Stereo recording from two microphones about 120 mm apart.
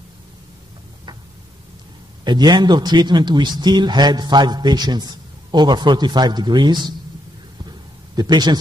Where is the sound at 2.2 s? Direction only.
35° right (ahead or behind).